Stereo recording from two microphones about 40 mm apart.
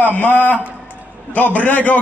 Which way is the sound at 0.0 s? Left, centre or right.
Left.